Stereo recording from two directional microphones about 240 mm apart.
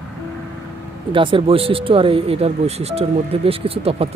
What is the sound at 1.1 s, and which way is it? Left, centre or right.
Speech, right.